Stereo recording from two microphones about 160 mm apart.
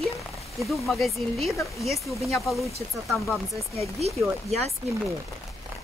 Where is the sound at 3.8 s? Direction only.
40° right (ahead or behind).